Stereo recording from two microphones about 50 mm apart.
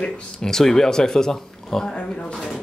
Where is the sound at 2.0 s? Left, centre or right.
Left.